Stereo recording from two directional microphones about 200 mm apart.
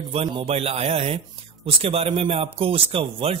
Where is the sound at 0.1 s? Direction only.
25° right (ahead or behind).